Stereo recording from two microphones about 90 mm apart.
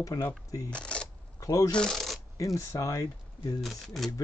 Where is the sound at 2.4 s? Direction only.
40° left (ahead or behind).